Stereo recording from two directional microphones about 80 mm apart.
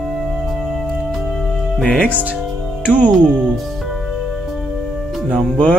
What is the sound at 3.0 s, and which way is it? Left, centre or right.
Speech, centre.